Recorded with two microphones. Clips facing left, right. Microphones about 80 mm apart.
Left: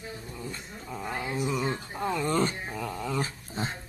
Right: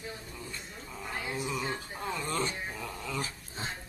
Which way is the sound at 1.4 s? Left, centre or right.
Left.